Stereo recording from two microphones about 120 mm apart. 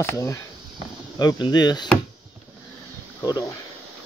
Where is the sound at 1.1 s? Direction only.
35° left (ahead or behind).